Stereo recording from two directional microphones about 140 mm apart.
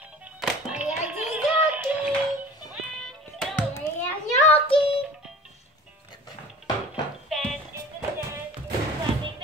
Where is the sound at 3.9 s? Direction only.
20° left (ahead or behind).